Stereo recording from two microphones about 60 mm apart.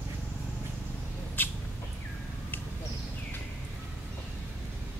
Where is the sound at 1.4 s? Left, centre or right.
Left.